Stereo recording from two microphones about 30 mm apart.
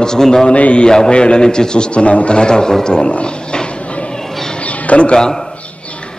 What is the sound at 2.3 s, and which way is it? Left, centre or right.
Speech, left.